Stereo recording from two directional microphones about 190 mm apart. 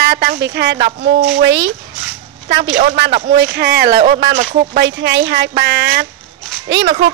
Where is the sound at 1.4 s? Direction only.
80° right.